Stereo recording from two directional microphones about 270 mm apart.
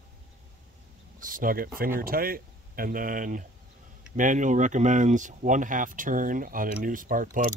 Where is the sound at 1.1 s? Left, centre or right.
Right.